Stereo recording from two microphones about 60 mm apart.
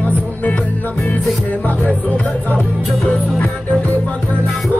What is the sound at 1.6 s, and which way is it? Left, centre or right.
Music, left.